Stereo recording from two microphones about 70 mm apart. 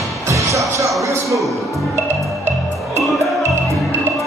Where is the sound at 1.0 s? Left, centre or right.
Right.